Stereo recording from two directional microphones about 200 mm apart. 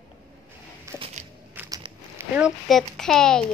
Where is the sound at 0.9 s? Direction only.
15° right (ahead or behind).